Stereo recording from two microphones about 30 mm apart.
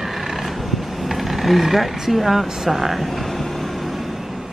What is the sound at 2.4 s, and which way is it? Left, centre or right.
Speech, centre.